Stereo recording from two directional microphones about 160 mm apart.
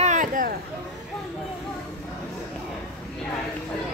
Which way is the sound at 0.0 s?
50° right (ahead or behind).